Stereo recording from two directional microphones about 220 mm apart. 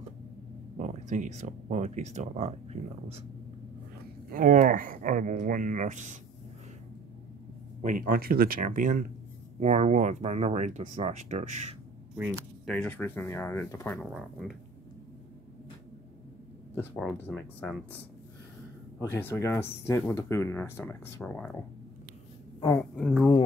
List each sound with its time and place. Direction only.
0.7 s speech: 30° right (ahead or behind)
4.3 s speech: 35° right (ahead or behind)
7.8 s speech: 40° right (ahead or behind)
12.6 s speech: 5° left (ahead or behind)
16.9 s speech: centre (ahead or behind)
18.9 s speech: 10° left (ahead or behind)
22.8 s speech: 5° left (ahead or behind)